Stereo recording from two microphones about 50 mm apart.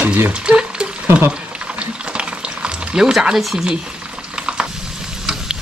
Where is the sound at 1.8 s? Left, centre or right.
Right.